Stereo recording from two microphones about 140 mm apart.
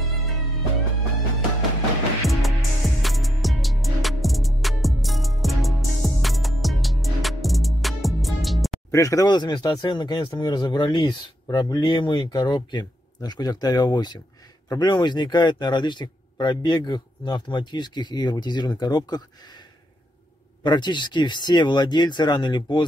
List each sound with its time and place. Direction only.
2.2 s music: centre (ahead or behind)
8.9 s speech: 25° left (ahead or behind)
20.6 s speech: 30° left (ahead or behind)